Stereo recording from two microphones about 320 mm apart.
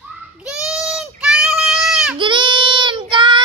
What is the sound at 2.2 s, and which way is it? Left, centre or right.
Child singing, centre.